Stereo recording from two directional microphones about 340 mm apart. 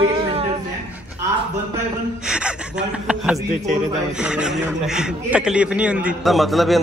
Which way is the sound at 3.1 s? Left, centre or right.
Centre.